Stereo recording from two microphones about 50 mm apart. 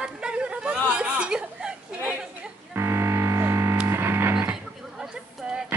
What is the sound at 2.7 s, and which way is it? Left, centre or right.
Music, right.